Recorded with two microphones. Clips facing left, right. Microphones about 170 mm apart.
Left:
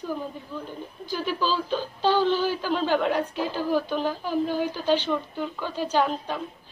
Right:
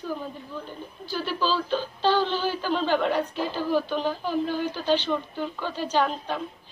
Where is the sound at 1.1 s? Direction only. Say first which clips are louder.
Even; 10° left (ahead or behind).